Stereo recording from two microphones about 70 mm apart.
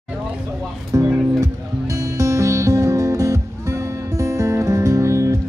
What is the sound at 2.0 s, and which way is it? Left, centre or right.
Music, right.